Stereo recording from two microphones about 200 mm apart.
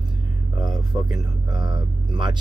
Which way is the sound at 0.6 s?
20° right (ahead or behind).